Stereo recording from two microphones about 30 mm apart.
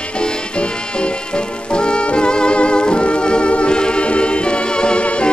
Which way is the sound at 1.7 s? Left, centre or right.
Left.